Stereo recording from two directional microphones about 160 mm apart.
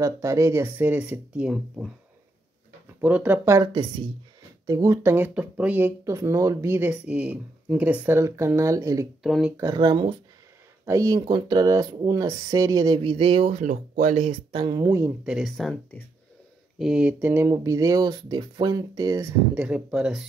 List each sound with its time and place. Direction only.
0.0 s speech: 20° right (ahead or behind)
3.0 s speech: 10° right (ahead or behind)
4.6 s speech: 20° right (ahead or behind)
9.2 s speech: centre (ahead or behind)
9.6 s speech: 25° right (ahead or behind); by 14.3 s 45° right (ahead or behind)
14.5 s speech: 25° right (ahead or behind)
15.2 s speech: centre (ahead or behind); by 19.3 s 20° right (ahead or behind)
19.5 s speech: 10° right (ahead or behind)